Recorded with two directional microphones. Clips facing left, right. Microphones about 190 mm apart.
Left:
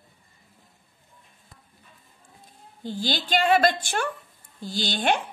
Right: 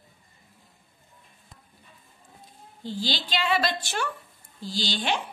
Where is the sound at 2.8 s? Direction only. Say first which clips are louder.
Left 2 dB; 50° left (ahead or behind).